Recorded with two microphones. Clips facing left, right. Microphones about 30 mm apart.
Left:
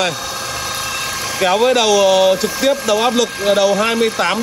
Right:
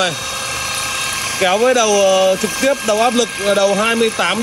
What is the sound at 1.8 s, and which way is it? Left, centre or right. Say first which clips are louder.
Speech: even; left.